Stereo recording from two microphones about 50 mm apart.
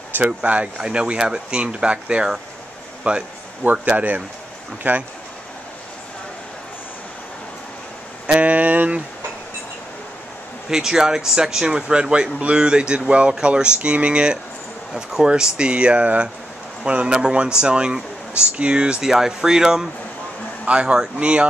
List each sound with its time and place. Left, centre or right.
0.2 s speech: right
3.9 s speech: right
8.3 s speech: right
10.7 s speech: centre
18.9 s speech: centre